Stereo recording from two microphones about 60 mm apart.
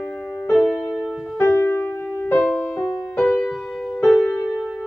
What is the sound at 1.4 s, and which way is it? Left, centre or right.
Music, left.